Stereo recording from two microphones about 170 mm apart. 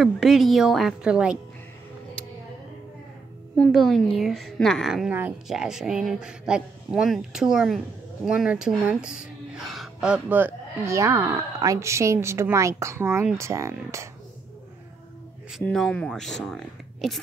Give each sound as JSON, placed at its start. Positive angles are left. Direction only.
{"t": 0.0, "sound": "a woman's voice", "side_deg": 0}
{"t": 3.5, "sound": "a woman's voice", "side_deg": 5}
{"t": 15.6, "sound": "a woman's voice", "side_deg": 5}